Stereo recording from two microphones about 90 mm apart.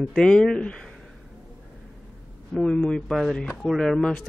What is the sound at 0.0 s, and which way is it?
Speech, 5° left (ahead or behind).